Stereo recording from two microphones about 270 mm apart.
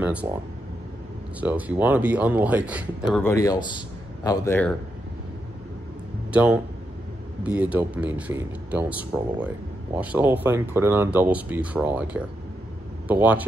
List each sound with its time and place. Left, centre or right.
0.0 s speech: centre
1.4 s speech: centre
3.2 s a man's voice: centre
6.3 s speech: centre